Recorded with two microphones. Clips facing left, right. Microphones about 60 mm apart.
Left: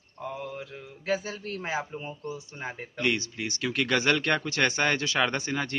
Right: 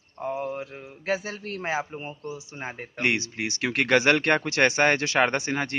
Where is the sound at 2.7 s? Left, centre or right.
Right.